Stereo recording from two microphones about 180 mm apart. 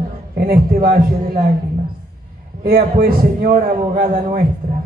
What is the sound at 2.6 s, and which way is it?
A man's voice, 55° right (ahead or behind).